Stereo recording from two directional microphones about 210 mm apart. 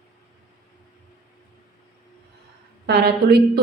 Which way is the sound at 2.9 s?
50° right (ahead or behind).